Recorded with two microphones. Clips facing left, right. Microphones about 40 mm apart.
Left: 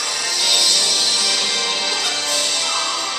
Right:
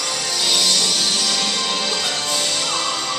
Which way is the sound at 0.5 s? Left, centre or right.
Left.